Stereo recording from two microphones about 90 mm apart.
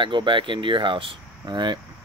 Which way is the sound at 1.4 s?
50° right (ahead or behind).